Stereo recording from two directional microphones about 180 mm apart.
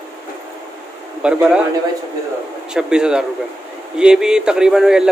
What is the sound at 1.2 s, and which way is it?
Speech, 5° right (ahead or behind).